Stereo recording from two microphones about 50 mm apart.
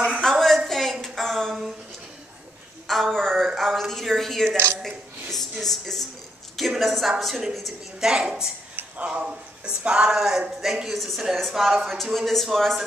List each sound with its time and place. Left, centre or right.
0.2 s a sound: centre
2.9 s speech: centre
8.0 s speech: centre